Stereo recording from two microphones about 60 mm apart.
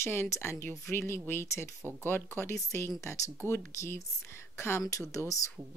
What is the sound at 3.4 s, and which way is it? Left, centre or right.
Speech, left.